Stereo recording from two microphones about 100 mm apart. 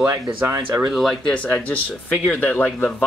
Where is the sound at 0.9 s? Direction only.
Centre (ahead or behind).